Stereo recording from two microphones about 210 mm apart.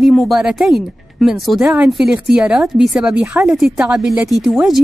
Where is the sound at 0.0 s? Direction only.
Centre (ahead or behind).